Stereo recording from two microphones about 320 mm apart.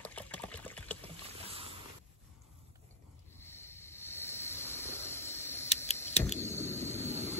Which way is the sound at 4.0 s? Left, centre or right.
Centre.